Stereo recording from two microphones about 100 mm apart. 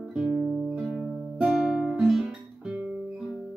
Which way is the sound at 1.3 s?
5° right (ahead or behind).